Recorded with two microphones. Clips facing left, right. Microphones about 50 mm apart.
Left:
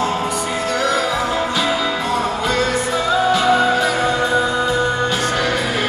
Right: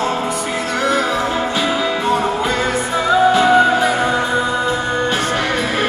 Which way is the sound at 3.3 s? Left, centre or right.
Centre.